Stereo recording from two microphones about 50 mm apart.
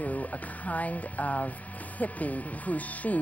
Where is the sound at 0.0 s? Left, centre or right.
Left.